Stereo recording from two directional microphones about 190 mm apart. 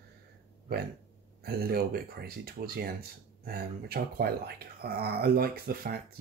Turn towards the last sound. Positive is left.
turn(degrees=-50)  # may be behind; listen again after turning